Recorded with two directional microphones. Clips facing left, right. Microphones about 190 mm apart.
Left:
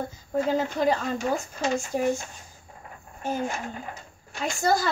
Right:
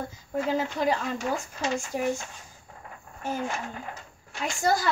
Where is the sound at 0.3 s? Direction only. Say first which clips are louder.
Left 2 dB; 40° left (ahead or behind).